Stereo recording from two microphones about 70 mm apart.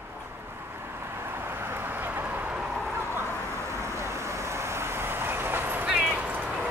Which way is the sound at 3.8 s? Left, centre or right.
Right.